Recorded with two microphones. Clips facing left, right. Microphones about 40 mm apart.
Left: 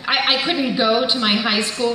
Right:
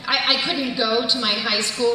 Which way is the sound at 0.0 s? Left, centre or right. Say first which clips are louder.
Left 2 dB; left.